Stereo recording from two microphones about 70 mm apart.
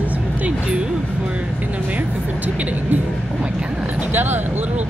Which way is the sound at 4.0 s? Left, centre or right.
Right.